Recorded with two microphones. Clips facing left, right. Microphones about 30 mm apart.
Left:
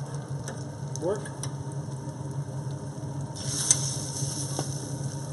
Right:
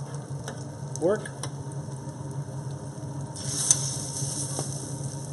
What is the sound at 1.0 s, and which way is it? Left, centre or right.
Speech, right.